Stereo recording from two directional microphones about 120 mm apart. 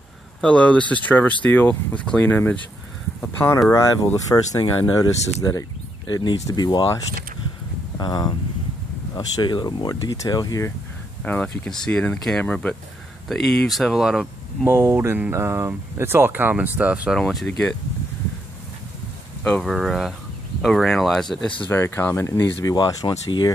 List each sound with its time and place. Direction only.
0.4 s speech: 10° left (ahead or behind); by 6.9 s 35° left (ahead or behind)
8.0 s speech: 35° left (ahead or behind)
11.2 s speech: 15° left (ahead or behind); by 14.2 s centre (ahead or behind)
14.7 s speech: 20° right (ahead or behind); by 17.7 s 5° left (ahead or behind)
19.4 s speech: 5° left (ahead or behind)
21.6 s speech: 20° left (ahead or behind)